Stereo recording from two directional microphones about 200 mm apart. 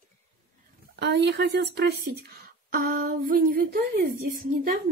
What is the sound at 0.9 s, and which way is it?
Speech, 55° right (ahead or behind).